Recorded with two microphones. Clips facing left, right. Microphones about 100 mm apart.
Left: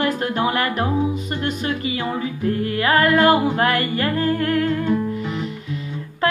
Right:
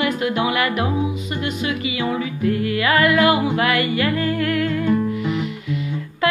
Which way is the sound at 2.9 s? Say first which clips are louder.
Left 1 dB; 40° left (ahead or behind).